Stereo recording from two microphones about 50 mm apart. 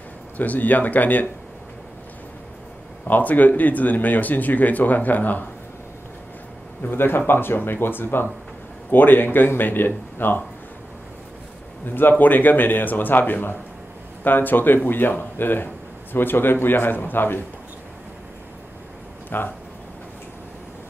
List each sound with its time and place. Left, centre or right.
0.4 s speech: left
3.1 s speech: left
6.8 s speech: left
11.8 s speech: left
19.3 s speech: left